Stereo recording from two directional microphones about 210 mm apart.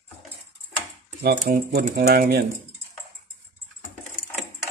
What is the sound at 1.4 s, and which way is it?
Speech, 45° right (ahead or behind).